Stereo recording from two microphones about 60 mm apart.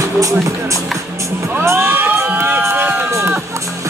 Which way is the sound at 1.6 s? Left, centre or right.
Right.